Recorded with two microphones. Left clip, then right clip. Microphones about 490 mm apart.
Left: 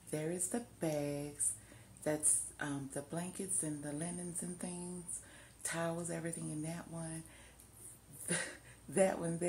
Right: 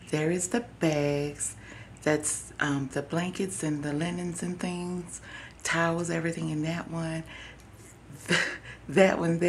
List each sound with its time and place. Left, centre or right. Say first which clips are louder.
0.1 s a woman's voice: right 12 dB; left
8.3 s speech: right 15 dB; left